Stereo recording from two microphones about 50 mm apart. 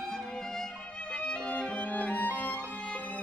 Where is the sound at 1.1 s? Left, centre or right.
Centre.